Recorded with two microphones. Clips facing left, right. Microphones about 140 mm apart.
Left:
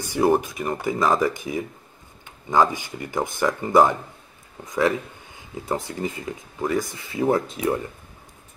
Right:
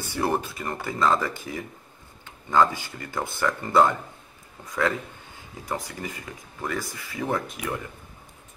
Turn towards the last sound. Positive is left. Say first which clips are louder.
# left 7 dB
turn(degrees=30)  # may be behind; listen again after turning